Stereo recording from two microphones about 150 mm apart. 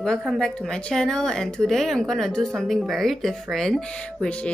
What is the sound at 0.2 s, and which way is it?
A woman's voice, centre (ahead or behind).